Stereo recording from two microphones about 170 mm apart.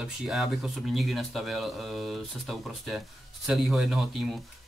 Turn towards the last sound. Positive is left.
turn(degrees=0)  # may be behind; listen again after turning